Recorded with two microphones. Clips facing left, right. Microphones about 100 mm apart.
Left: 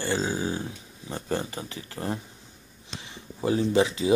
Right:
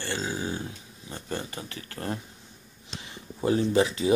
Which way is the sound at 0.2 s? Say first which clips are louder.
Left 3 dB; 30° left (ahead or behind).